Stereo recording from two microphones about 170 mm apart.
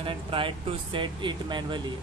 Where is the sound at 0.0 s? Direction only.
30° right (ahead or behind).